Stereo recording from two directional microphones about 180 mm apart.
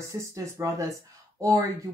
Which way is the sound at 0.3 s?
15° right (ahead or behind).